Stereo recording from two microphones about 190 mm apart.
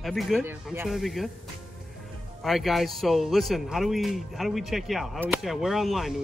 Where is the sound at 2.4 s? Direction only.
Centre (ahead or behind).